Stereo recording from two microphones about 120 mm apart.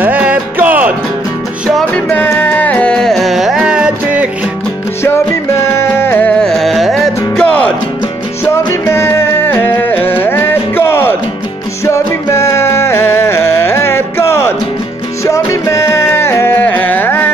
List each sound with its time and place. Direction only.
0.0 s music: 10° right (ahead or behind)
2.0 s music: 20° left (ahead or behind); by 4.3 s 10° right (ahead or behind)
5.0 s music: 20° left (ahead or behind)
6.4 s music: centre (ahead or behind)
8.8 s music: 20° left (ahead or behind)